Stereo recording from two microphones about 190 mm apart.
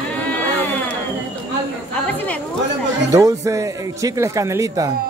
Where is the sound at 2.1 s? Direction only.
10° left (ahead or behind).